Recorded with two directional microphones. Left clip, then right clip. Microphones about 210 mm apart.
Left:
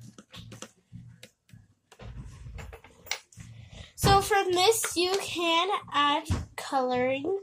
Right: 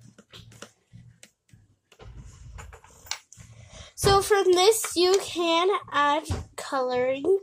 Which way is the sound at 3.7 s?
30° right (ahead or behind).